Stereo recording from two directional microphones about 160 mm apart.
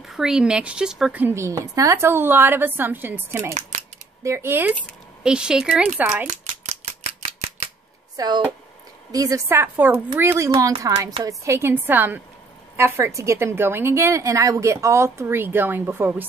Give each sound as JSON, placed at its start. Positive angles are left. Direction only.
{"t": 0.1, "sound": "a woman's voice", "side_deg": -5}
{"t": 6.2, "sound": "scissors", "side_deg": -45}
{"t": 9.1, "sound": "a woman's voice", "side_deg": -20}